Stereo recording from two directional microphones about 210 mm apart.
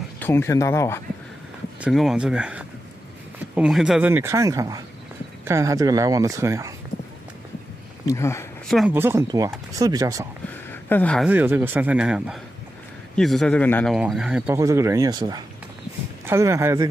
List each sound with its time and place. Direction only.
0.2 s speech: 10° left (ahead or behind)
1.8 s speech: centre (ahead or behind)
8.1 s speech: 15° left (ahead or behind)
8.6 s speech: centre (ahead or behind)
8.9 s speech: 10° right (ahead or behind)
10.7 s a sound: 10° left (ahead or behind)
11.2 s speech: 10° right (ahead or behind); by 13.9 s 10° left (ahead or behind)
13.9 s speech: 5° right (ahead or behind)